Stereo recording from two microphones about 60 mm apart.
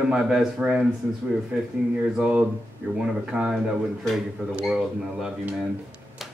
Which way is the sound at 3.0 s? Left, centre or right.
Centre.